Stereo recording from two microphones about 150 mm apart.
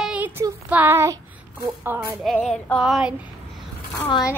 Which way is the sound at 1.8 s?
15° right (ahead or behind).